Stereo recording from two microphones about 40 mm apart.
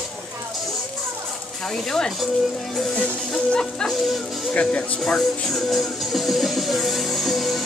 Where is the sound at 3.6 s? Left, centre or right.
Centre.